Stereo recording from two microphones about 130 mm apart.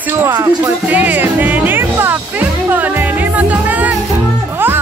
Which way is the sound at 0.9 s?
10° right (ahead or behind).